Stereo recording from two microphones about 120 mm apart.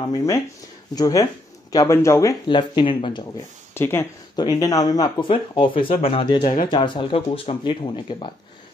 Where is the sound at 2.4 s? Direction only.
40° left (ahead or behind).